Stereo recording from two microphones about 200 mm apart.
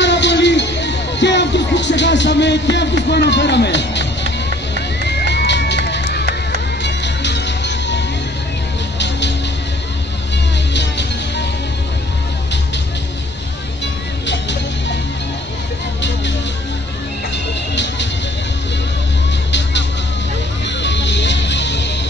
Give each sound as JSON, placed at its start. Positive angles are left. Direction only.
{"t": 0.0, "sound": "music", "side_deg": 60}
{"t": 10.7, "sound": "music", "side_deg": 60}
{"t": 14.2, "sound": "music", "side_deg": 60}
{"t": 20.6, "sound": "music", "side_deg": 60}